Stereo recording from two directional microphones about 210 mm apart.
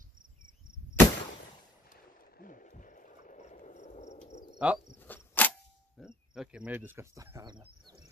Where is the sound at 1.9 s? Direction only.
40° left (ahead or behind).